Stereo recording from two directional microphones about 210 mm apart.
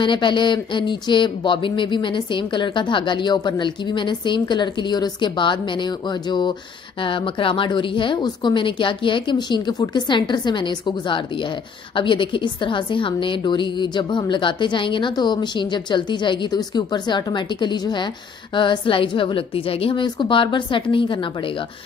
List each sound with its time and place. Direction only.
0.0 s a woman's voice: 25° left (ahead or behind)